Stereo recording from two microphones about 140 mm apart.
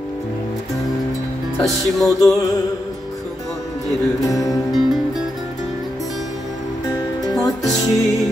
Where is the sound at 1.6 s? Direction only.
Centre (ahead or behind).